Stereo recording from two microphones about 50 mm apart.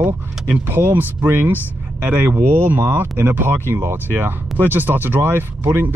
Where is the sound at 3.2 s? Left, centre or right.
Right.